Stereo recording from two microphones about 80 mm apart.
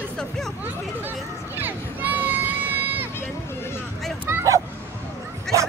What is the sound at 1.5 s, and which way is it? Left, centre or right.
Run, right.